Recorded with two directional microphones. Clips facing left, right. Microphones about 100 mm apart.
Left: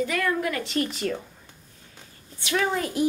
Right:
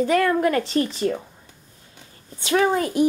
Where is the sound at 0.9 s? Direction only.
25° right (ahead or behind).